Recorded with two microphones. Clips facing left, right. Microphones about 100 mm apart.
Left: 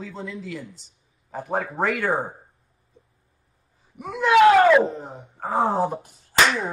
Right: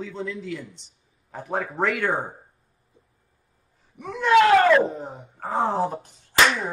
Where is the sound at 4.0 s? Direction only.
5° left (ahead or behind).